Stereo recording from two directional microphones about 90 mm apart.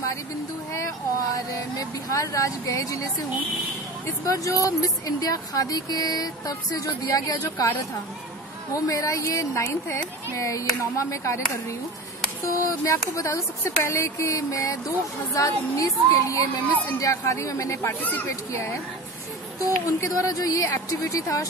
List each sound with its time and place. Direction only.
0.7 s vehicle: 40° left (ahead or behind)
4.3 s speech: 40° left (ahead or behind)
8.7 s speech: 40° left (ahead or behind)
12.6 s speech: 35° left (ahead or behind)
17.8 s speech: 20° left (ahead or behind)
18.3 s speech: 30° left (ahead or behind)